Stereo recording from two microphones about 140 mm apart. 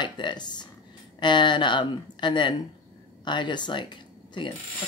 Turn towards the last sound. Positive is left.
turn(degrees=35)  # may be behind; listen again after turning